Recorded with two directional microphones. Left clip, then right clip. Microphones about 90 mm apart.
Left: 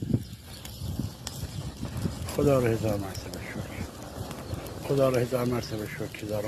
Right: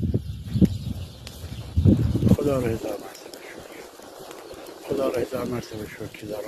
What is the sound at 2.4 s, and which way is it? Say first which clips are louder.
Speech: left 5 dB; 25° right (ahead or behind).